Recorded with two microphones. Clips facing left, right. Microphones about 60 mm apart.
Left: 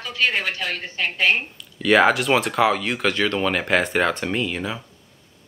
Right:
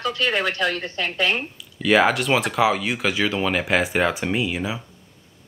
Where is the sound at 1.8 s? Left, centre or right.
Centre.